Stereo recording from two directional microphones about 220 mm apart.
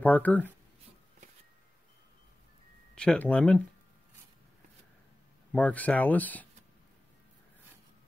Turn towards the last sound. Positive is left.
turn(degrees=5)  # may be behind; listen again after turning